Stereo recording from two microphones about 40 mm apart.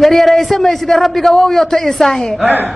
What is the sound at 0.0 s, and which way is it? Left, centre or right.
A man's voice, centre.